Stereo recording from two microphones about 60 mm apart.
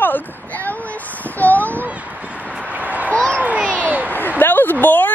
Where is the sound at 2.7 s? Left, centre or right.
Right.